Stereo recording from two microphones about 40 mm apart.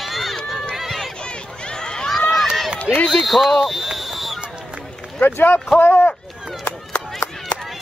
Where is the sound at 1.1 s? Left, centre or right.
Left.